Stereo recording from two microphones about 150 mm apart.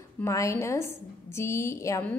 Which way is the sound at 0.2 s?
20° left (ahead or behind).